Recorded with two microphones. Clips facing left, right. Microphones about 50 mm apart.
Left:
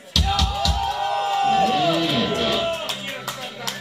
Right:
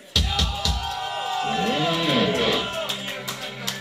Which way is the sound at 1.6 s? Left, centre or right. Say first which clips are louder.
Left 3 dB; right.